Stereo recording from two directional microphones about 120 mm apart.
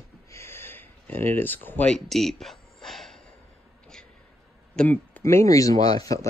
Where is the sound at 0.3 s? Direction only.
20° left (ahead or behind).